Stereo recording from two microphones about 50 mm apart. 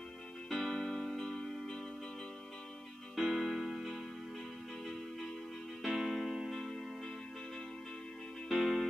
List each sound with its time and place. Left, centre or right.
0.5 s music: centre
3.2 s music: centre
5.8 s music: centre
8.5 s music: centre